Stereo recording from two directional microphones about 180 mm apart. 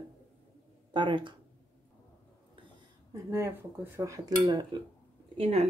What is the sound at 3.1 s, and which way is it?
A woman's voice, 15° right (ahead or behind).